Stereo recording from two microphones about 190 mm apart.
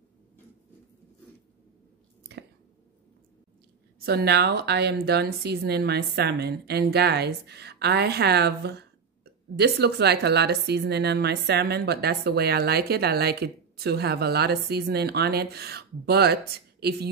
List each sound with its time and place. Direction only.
4.0 s a woman's voice: 55° right (ahead or behind)